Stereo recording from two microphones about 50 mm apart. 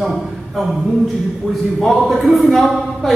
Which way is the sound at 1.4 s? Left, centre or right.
Centre.